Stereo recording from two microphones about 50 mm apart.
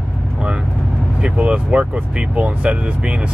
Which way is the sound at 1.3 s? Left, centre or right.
Right.